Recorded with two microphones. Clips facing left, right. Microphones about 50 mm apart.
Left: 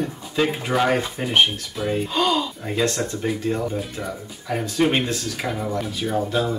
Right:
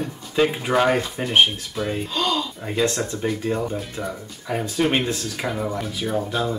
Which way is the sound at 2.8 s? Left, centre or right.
Centre.